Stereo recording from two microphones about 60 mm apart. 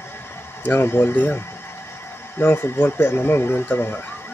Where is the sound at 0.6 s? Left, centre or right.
Left.